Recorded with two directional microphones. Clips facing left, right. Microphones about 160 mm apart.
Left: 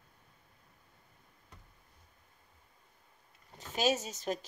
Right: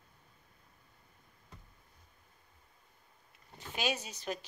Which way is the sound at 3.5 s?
40° left (ahead or behind).